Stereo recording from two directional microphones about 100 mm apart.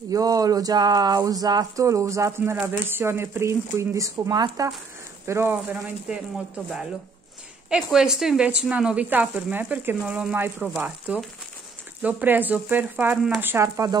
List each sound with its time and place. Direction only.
0.1 s a sound: 35° right (ahead or behind)
2.6 s speech: 25° right (ahead or behind)
5.2 s speech: 25° right (ahead or behind)